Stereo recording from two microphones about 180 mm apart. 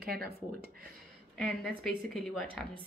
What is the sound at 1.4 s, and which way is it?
A woman's voice, centre (ahead or behind).